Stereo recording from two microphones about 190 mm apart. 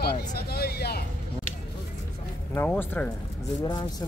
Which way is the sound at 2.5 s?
10° left (ahead or behind).